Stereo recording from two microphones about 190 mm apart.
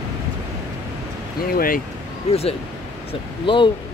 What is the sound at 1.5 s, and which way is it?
Speech, 50° left (ahead or behind).